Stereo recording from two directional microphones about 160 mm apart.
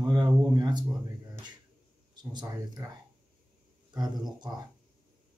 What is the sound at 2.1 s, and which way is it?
Speech, 25° right (ahead or behind).